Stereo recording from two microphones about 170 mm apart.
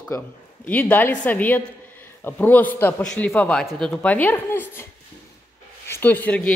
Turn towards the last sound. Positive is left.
turn(degrees=10)  # may be behind; listen again after turning